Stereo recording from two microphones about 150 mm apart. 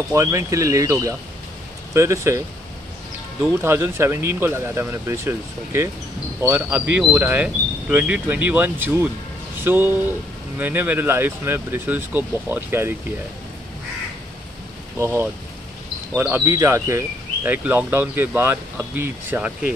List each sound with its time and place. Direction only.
0.1 s speech: 20° right (ahead or behind)
3.6 s speech: 15° right (ahead or behind)
15.0 s speech: 15° right (ahead or behind)